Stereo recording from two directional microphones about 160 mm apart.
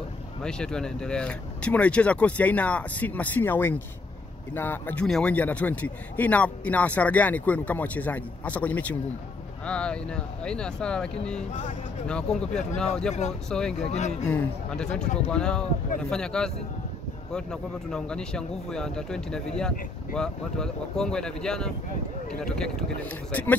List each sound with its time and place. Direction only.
0.4 s a man's voice: 5° left (ahead or behind)
12.1 s speech: 5° left (ahead or behind)
13.8 s speech: 45° left (ahead or behind)
14.3 s speech: 5° left (ahead or behind)